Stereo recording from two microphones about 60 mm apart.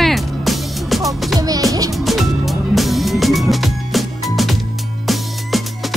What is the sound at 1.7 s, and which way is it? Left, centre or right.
Music, right.